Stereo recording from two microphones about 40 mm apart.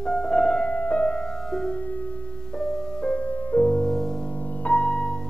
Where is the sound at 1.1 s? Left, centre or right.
Centre.